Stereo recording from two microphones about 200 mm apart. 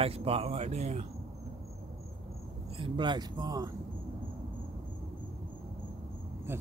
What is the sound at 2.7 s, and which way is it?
Speech, 25° right (ahead or behind).